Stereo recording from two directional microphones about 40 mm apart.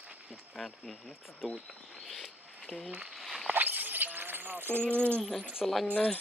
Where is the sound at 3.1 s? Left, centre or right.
Centre.